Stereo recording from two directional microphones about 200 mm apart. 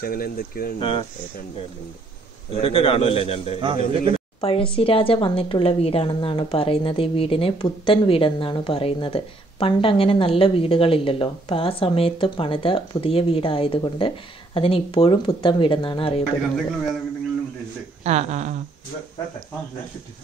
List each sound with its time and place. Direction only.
0.0 s speech: 50° left (ahead or behind)
0.7 s a woman's voice: 25° left (ahead or behind)
2.5 s a woman's voice: 30° left (ahead or behind)
3.6 s a man's voice: 25° right (ahead or behind)
4.4 s a woman's voice: 30° left (ahead or behind)
18.0 s speech: 35° right (ahead or behind)